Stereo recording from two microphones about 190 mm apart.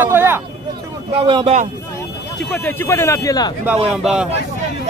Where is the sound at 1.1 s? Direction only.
30° right (ahead or behind).